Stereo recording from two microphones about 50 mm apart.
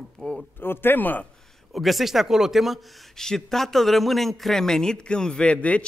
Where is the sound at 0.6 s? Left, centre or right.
Left.